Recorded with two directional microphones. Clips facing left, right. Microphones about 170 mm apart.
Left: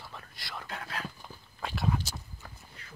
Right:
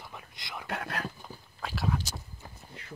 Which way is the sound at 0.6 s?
60° right (ahead or behind).